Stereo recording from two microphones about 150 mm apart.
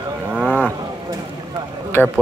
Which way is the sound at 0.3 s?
10° right (ahead or behind).